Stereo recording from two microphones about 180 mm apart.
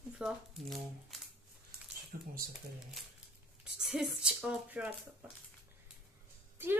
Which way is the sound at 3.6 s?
5° right (ahead or behind).